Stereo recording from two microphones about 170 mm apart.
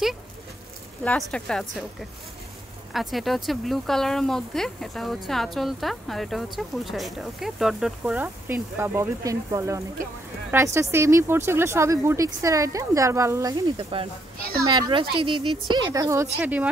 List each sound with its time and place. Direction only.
1.0 s speech: 5° left (ahead or behind); by 13.6 s 20° right (ahead or behind)
13.7 s a woman's voice: 35° right (ahead or behind); by 16.6 s 10° right (ahead or behind)